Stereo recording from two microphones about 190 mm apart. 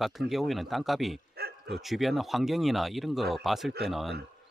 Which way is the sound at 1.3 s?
55° right (ahead or behind).